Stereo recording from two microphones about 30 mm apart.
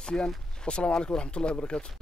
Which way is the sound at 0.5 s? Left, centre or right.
Left.